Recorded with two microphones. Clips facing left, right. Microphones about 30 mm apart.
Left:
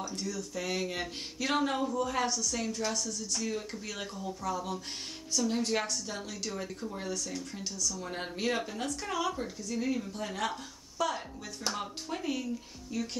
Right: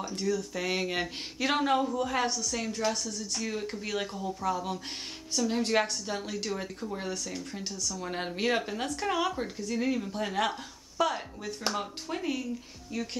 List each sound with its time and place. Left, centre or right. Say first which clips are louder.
0.0 s a woman's voice: right 6 dB; right
11.0 s speech: right 4 dB; centre